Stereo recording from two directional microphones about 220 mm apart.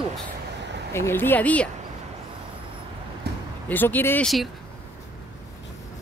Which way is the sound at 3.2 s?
45° right (ahead or behind).